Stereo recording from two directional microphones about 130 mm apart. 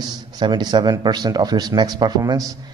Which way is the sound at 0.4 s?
35° right (ahead or behind).